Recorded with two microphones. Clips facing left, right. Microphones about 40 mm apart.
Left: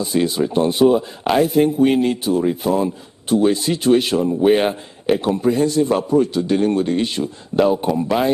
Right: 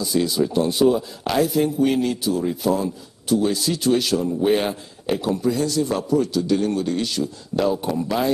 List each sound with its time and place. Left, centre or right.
0.0 s speech: left